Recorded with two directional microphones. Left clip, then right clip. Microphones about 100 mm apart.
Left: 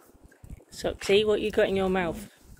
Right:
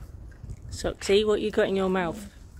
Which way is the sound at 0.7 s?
40° right (ahead or behind).